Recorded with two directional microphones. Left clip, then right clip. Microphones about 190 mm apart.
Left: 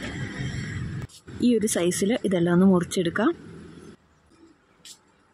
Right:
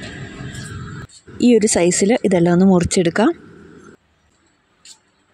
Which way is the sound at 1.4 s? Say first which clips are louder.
Right 9 dB; 25° right (ahead or behind).